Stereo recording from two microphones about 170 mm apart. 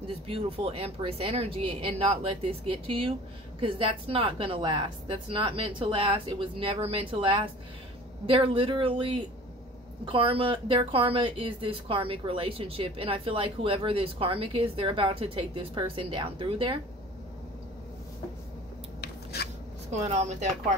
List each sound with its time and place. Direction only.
0.3 s speech: 35° right (ahead or behind)
18.9 s scissors: 70° left (ahead or behind)
20.1 s speech: 40° right (ahead or behind)